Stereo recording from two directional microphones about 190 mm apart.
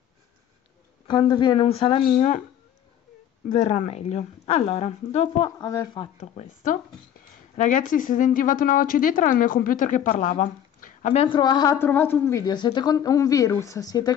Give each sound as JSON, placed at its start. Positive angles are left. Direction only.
{"t": 1.0, "sound": "a woman's voice", "side_deg": 25}
{"t": 3.4, "sound": "speech", "side_deg": 40}
{"t": 5.6, "sound": "speech", "side_deg": 15}
{"t": 5.9, "sound": "a woman's voice", "side_deg": 35}
{"t": 10.3, "sound": "a sound", "side_deg": 45}
{"t": 11.2, "sound": "a woman's voice", "side_deg": 25}